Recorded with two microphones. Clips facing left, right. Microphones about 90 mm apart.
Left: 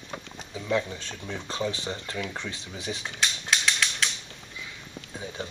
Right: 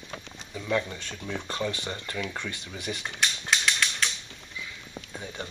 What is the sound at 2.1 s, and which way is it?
Speech, centre (ahead or behind).